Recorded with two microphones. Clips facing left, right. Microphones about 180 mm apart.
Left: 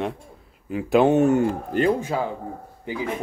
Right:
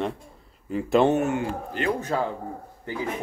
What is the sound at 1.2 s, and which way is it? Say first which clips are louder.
Speech: left 7 dB; 40° left (ahead or behind).